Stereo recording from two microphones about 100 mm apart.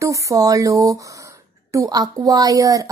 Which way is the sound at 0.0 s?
35° right (ahead or behind).